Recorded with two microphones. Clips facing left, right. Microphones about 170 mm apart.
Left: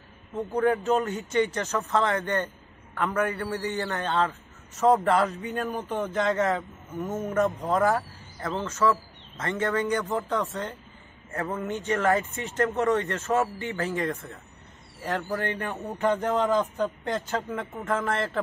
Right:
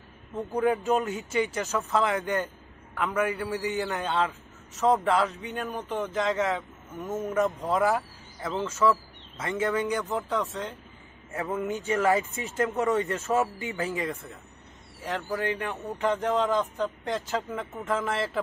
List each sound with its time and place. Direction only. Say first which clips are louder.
0.7 s speech: left 1 dB; 15° right (ahead or behind)
1.0 s speech: left 2 dB; centre (ahead or behind)
13.1 s speech: even; 15° right (ahead or behind)
13.6 s speech: left 2 dB; centre (ahead or behind)